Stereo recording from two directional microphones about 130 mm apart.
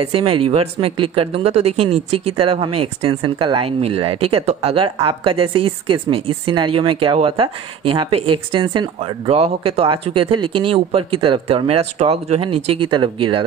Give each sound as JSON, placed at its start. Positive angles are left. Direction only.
{"t": 0.0, "sound": "speech", "side_deg": -45}
{"t": 9.3, "sound": "speech", "side_deg": -50}